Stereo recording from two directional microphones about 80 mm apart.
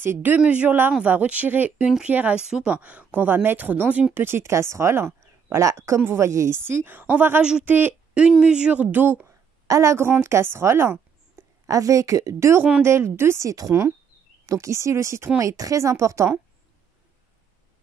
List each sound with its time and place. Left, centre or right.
0.0 s speech: right
0.4 s speech: centre
1.9 s speech: centre
2.1 s speech: centre
8.1 s speech: centre
9.7 s a woman's voice: right